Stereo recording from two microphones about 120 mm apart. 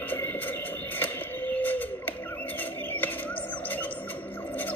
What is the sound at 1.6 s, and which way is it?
Bird, 15° left (ahead or behind).